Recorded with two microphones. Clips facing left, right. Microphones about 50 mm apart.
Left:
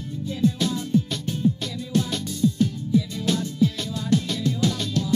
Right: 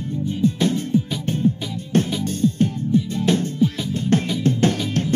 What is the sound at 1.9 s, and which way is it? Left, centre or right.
Music, right.